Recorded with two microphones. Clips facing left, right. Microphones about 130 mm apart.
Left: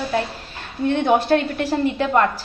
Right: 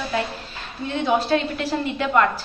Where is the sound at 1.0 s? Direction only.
55° left (ahead or behind).